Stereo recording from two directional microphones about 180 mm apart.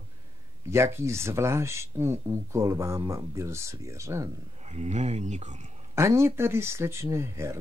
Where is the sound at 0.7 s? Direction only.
15° right (ahead or behind).